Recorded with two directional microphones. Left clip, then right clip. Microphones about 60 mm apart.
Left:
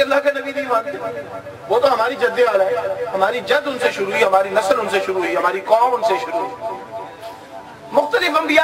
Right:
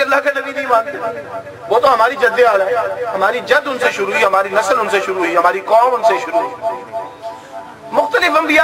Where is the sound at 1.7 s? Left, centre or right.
Right.